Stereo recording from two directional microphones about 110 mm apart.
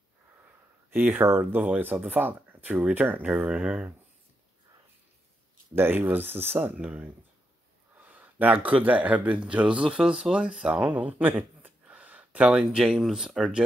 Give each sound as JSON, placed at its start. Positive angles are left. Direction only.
{"t": 0.8, "sound": "speech", "side_deg": -20}
{"t": 5.8, "sound": "speech", "side_deg": -20}